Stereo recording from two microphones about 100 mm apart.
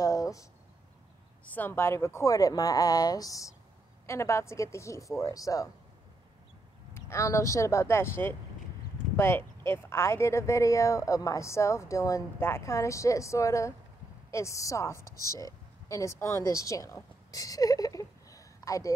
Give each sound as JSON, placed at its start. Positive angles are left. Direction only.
{"t": 0.0, "sound": "a sound", "side_deg": 35}
{"t": 1.4, "sound": "speech", "side_deg": 20}
{"t": 6.9, "sound": "speech", "side_deg": 25}